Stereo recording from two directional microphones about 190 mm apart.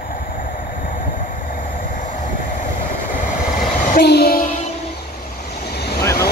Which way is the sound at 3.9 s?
55° left (ahead or behind).